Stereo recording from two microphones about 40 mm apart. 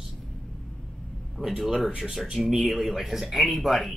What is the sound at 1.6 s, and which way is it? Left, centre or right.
Speech, centre.